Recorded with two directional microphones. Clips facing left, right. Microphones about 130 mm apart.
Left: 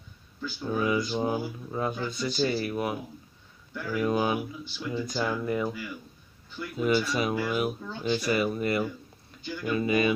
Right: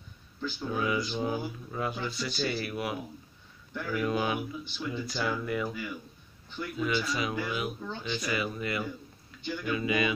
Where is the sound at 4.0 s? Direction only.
30° left (ahead or behind).